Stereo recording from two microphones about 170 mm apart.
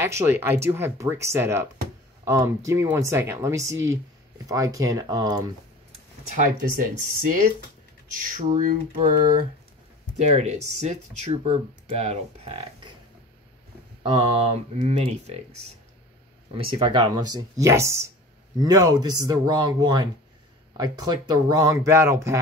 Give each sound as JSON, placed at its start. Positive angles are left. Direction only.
{"t": 0.0, "sound": "speech", "side_deg": -15}
{"t": 6.3, "sound": "typing", "side_deg": -50}
{"t": 10.3, "sound": "speech", "side_deg": -40}
{"t": 14.1, "sound": "speech", "side_deg": -35}